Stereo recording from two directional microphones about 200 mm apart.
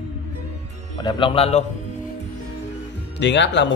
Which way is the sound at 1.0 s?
25° left (ahead or behind).